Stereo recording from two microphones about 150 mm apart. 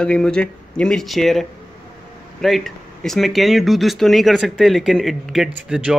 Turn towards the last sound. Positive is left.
turn(degrees=-5)  # may be behind; listen again after turning